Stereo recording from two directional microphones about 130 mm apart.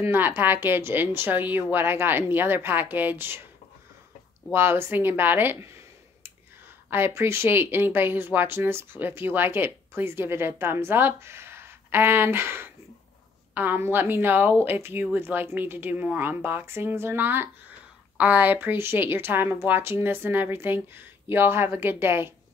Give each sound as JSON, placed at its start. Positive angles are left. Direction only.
{"t": 0.0, "sound": "speech", "side_deg": -20}
{"t": 4.5, "sound": "speech", "side_deg": -20}
{"t": 6.9, "sound": "speech", "side_deg": -20}